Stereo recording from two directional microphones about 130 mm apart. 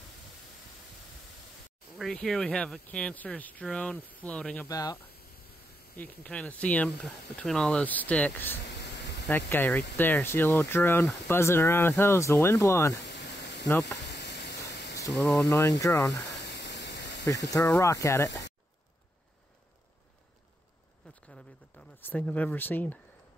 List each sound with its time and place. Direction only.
2.0 s speech: 5° left (ahead or behind)
4.6 s speech: 30° left (ahead or behind)
5.9 s speech: 10° left (ahead or behind)
15.1 s speech: centre (ahead or behind)
15.5 s speech: 25° left (ahead or behind)
17.3 s speech: 25° left (ahead or behind)
21.1 s speech: 10° left (ahead or behind)